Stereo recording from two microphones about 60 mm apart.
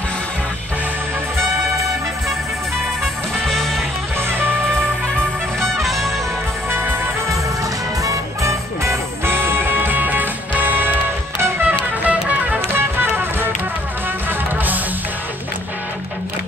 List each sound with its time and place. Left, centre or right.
3.4 s music: centre
5.6 s music: centre
6.7 s music: right
8.0 s music: right
9.3 s music: right
11.6 s music: right
12.7 s music: right